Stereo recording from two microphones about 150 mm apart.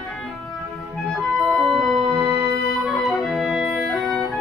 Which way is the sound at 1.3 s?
5° right (ahead or behind).